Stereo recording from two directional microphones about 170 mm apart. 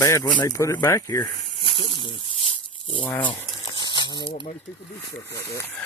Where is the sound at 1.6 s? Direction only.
30° left (ahead or behind).